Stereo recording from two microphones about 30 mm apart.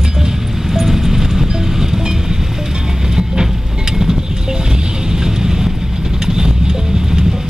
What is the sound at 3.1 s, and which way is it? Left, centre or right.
Vehicle, right.